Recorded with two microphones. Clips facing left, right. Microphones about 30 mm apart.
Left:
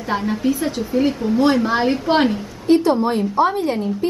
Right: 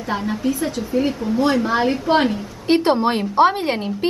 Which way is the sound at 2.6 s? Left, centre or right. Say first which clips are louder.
Left 1 dB; right.